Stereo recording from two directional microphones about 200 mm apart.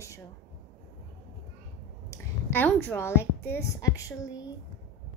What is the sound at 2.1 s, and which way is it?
A woman's voice, 10° left (ahead or behind).